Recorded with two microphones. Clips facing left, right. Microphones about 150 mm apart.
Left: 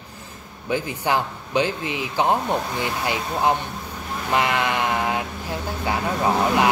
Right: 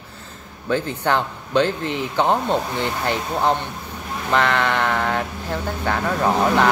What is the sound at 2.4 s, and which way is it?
Speech, 20° right (ahead or behind).